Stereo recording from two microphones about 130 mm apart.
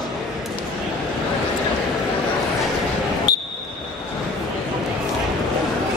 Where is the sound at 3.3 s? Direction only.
30° left (ahead or behind).